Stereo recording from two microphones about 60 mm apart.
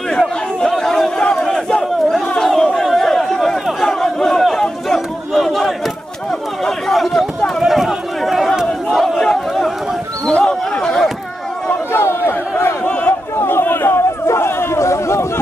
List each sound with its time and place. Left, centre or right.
0.6 s chatter: centre
1.2 s battle cry: centre
2.3 s chatter: centre
3.8 s battle cry: centre
6.6 s chatter: centre
8.9 s crowd: centre
10.3 s a sound: centre
11.9 s a sound: left